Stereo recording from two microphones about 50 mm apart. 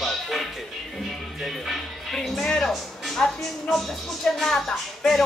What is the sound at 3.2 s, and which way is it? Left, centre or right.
Speech, left.